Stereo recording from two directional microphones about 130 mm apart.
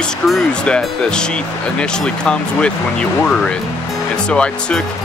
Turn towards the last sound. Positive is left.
turn(degrees=10)  # may be behind; listen again after turning